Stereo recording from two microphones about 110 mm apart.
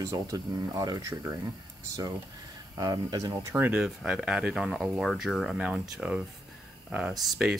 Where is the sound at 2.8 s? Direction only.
35° right (ahead or behind).